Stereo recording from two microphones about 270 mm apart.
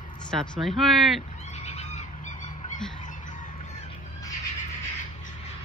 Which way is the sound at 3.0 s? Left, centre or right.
Left.